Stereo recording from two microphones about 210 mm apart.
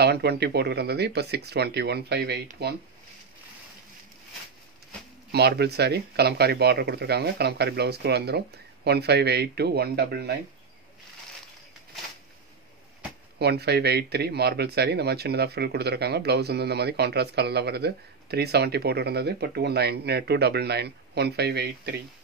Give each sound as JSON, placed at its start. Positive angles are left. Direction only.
{"t": 0.0, "sound": "speech", "side_deg": -50}
{"t": 5.3, "sound": "speech", "side_deg": -50}
{"t": 13.4, "sound": "speech", "side_deg": -50}